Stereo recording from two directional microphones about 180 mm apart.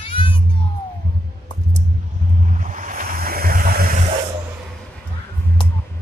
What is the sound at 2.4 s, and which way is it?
Vehicle, 45° right (ahead or behind).